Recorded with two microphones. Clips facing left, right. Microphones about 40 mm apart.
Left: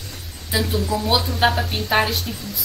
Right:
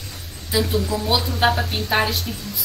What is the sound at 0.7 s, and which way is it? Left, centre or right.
A woman's voice, centre.